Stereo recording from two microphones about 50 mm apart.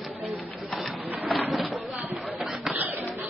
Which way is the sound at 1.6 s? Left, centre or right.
Centre.